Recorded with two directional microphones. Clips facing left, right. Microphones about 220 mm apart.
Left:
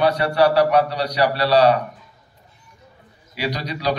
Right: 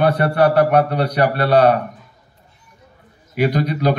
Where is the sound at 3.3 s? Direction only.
50° right (ahead or behind).